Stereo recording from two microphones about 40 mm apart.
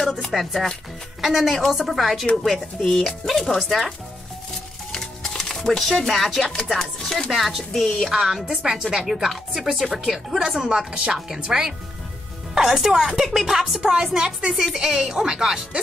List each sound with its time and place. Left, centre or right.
0.3 s speech: centre
4.9 s music: centre
6.0 s speech: centre
6.7 s music: centre
7.3 s speech: centre
8.1 s a woman's voice: centre
13.7 s a woman's voice: right